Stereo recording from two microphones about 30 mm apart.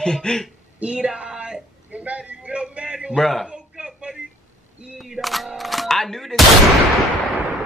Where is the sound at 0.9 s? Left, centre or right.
Right.